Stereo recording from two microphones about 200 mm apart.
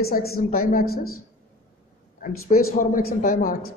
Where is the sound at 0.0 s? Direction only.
50° left (ahead or behind).